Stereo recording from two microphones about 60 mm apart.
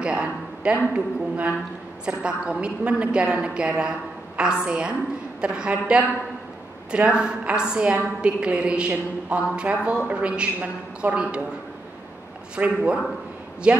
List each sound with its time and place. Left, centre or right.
0.0 s a sound: centre
0.9 s a woman's voice: right
12.5 s a woman's voice: centre